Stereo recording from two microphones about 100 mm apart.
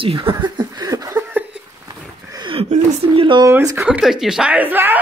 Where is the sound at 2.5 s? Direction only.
65° right (ahead or behind).